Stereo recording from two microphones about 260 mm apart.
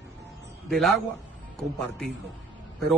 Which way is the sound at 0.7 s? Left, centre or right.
Centre.